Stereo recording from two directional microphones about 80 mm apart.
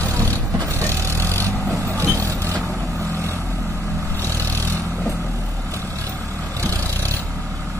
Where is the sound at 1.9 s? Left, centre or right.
Right.